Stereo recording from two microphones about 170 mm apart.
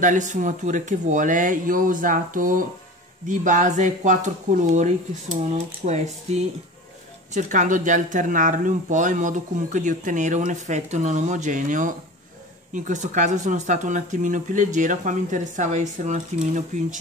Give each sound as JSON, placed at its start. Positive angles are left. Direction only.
{"t": 0.0, "sound": "speech", "side_deg": -45}